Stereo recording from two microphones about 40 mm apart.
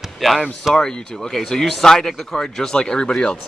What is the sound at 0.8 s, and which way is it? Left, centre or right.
Speech, centre.